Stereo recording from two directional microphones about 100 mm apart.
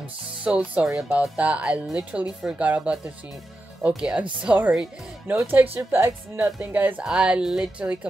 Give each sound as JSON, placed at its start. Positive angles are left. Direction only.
{"t": 0.4, "sound": "speech", "side_deg": -15}